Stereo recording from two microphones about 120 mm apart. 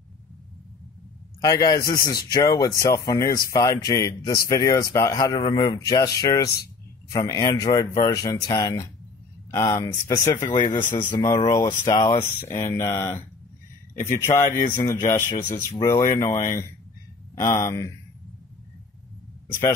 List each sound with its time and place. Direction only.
1.4 s speech: 30° left (ahead or behind)
12.2 s speech: 20° left (ahead or behind)
14.0 s speech: 20° left (ahead or behind)